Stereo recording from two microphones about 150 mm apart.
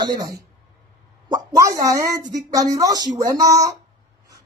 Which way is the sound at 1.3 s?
25° right (ahead or behind).